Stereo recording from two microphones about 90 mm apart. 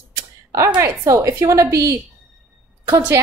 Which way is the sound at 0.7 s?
35° right (ahead or behind).